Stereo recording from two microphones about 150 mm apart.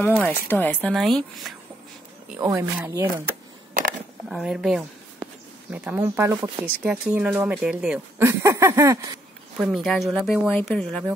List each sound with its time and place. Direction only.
0.2 s speech: 15° left (ahead or behind)
2.4 s speech: 20° right (ahead or behind)
4.3 s speech: 5° right (ahead or behind)
8.2 s speech: 15° right (ahead or behind)
9.6 s speech: centre (ahead or behind)